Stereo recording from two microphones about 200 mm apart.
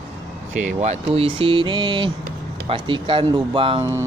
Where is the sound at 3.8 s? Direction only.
15° right (ahead or behind).